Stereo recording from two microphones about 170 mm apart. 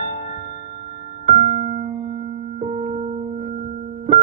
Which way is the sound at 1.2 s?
45° right (ahead or behind).